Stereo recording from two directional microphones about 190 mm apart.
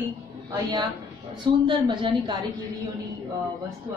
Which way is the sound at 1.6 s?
25° right (ahead or behind).